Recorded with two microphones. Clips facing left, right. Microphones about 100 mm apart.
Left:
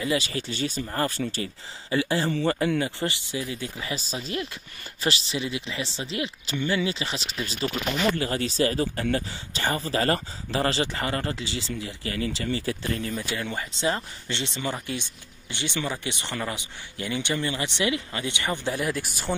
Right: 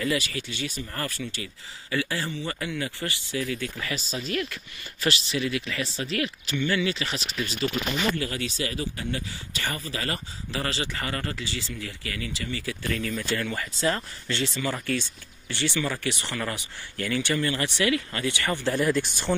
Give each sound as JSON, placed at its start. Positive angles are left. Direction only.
{"t": 0.0, "sound": "speech", "side_deg": 25}
{"t": 2.3, "sound": "speech", "side_deg": 40}
{"t": 3.9, "sound": "speech", "side_deg": 35}
{"t": 13.2, "sound": "speech", "side_deg": 15}